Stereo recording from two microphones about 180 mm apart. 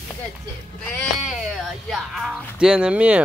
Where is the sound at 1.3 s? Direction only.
Centre (ahead or behind).